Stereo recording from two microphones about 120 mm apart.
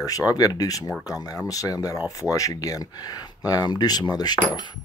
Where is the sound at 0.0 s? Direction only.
30° left (ahead or behind).